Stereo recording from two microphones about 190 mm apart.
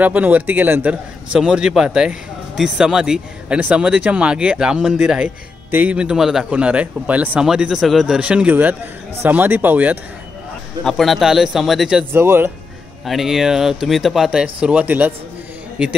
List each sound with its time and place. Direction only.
0.0 s a man's voice: 10° right (ahead or behind)
10.8 s a man's voice: centre (ahead or behind)
13.0 s a man's voice: centre (ahead or behind)